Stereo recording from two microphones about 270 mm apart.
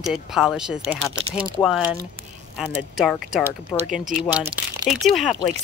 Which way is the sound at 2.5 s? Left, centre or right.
Centre.